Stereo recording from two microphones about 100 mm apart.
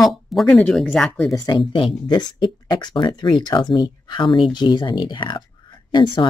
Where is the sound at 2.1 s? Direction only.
50° left (ahead or behind).